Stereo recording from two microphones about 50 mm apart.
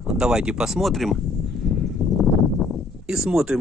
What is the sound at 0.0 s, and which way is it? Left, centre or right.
Speech, centre.